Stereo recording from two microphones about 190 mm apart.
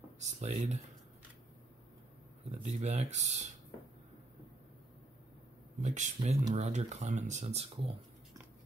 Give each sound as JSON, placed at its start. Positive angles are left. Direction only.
{"t": 0.2, "sound": "speech", "side_deg": -35}
{"t": 2.6, "sound": "speech", "side_deg": -35}
{"t": 5.8, "sound": "speech", "side_deg": -40}